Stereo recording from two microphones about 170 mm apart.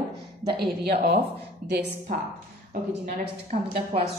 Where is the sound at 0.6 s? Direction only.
65° right (ahead or behind).